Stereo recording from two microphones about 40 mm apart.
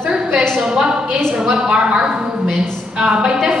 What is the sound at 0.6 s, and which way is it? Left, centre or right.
A woman's voice, centre.